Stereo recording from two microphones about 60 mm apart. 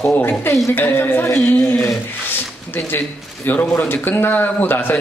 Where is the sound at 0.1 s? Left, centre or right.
Left.